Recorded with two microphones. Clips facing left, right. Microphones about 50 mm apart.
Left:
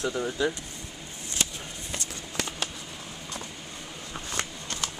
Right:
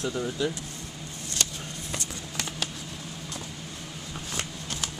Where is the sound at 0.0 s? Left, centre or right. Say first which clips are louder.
Left 1 dB; centre.